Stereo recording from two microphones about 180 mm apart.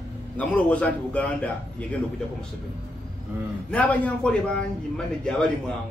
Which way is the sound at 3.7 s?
10° left (ahead or behind).